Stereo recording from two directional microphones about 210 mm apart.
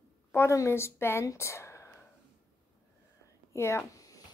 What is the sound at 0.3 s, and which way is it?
Speech, 10° left (ahead or behind).